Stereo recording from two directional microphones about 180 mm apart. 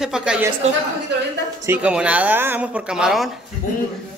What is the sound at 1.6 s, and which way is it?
Speech, 10° right (ahead or behind).